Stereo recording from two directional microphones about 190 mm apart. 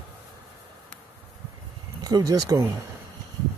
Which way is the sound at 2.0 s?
20° right (ahead or behind).